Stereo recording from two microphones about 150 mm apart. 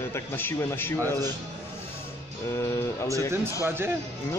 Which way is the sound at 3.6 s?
15° right (ahead or behind).